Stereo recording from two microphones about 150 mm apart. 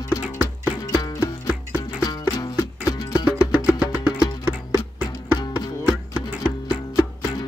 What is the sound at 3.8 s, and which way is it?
Music, 10° right (ahead or behind).